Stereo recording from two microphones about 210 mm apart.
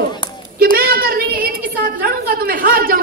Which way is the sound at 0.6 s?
45° right (ahead or behind).